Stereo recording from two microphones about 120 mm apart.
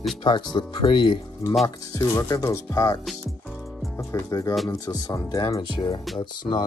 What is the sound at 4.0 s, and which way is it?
Speech, 25° left (ahead or behind).